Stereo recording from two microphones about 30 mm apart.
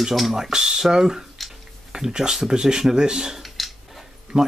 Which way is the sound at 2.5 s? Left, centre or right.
Right.